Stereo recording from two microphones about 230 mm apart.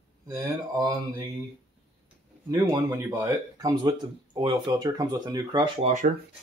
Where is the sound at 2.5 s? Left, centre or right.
Centre; by 6.1 s right.